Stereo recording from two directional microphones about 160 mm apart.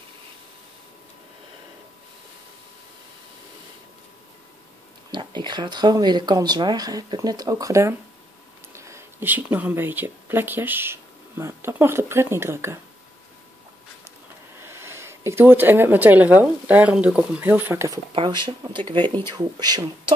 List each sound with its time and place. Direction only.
5.1 s speech: 30° right (ahead or behind)
14.6 s speech: 15° right (ahead or behind)
18.1 s speech: 30° right (ahead or behind)